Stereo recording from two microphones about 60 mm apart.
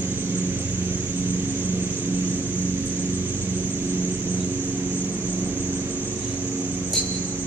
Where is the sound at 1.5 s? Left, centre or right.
Right.